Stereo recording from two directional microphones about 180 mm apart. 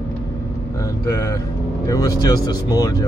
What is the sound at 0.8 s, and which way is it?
Speech, 20° left (ahead or behind).